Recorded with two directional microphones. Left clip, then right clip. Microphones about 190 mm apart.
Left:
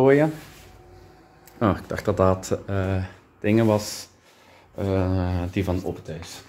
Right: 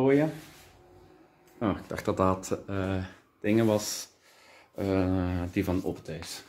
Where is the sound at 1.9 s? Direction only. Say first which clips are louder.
Left 4 dB; 5° left (ahead or behind).